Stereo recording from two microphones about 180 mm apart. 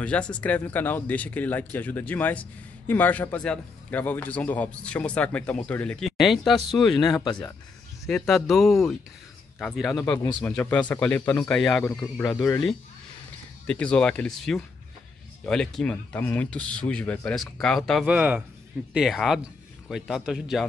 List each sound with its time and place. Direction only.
0.0 s a man's voice: 5° left (ahead or behind)
7.0 s speech: 20° left (ahead or behind)
8.1 s a man's voice: centre (ahead or behind)
13.7 s speech: 5° left (ahead or behind)